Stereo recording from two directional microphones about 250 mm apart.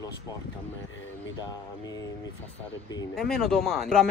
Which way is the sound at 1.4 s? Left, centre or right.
Centre.